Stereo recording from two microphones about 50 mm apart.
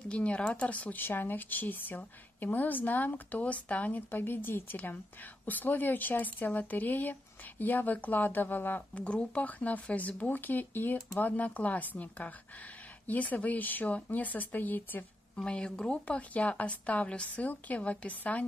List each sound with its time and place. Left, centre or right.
0.1 s a woman's voice: left
4.2 s speech: left
8.9 s speech: left
15.3 s a woman's voice: centre